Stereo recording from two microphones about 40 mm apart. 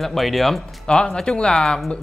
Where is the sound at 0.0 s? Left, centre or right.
Centre.